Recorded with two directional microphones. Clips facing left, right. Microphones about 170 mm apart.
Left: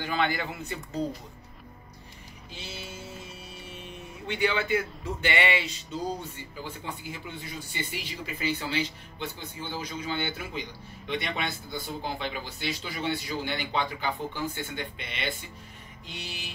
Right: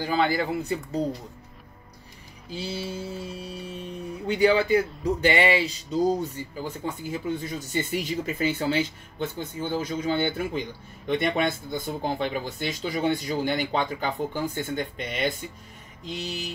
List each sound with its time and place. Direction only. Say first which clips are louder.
0.0 s speech: right 5 dB; 35° right (ahead or behind)
2.5 s speech: right 10 dB; 35° right (ahead or behind)